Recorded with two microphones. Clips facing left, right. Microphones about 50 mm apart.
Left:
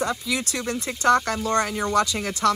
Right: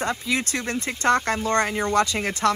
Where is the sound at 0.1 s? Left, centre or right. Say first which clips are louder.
Right 1 dB; right.